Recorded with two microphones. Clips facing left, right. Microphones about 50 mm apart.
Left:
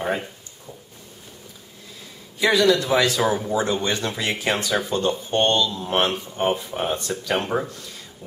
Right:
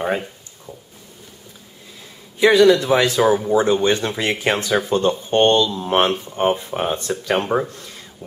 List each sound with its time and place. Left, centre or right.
2.4 s speech: centre
3.1 s speech: centre
3.5 s speech: right
5.7 s speech: centre